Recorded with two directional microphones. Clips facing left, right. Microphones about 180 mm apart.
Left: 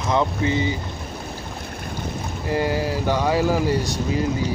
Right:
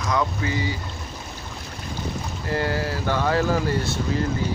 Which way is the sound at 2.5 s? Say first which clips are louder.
Left 3 dB; 15° left (ahead or behind).